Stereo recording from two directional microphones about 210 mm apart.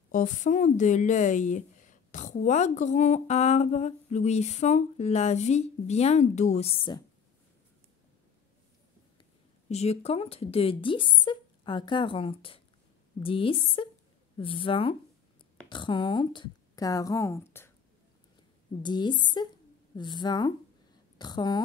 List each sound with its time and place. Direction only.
0.1 s a woman's voice: 35° left (ahead or behind)
9.7 s a woman's voice: 30° left (ahead or behind); by 17.6 s 10° left (ahead or behind)
18.8 s speech: 20° left (ahead or behind)